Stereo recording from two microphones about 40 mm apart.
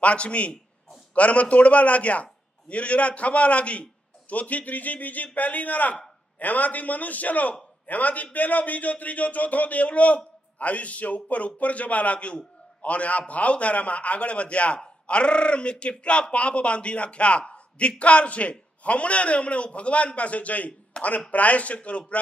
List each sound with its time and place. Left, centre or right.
0.0 s a man's voice: left
20.9 s speech: left
21.3 s speech: left